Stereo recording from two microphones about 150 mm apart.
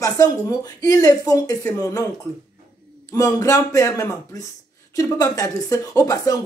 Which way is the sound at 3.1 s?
25° left (ahead or behind).